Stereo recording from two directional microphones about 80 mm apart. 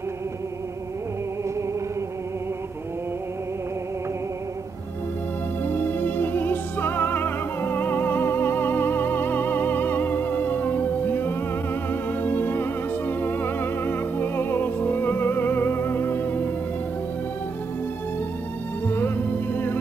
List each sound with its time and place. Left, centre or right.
5.7 s music: left
18.9 s music: left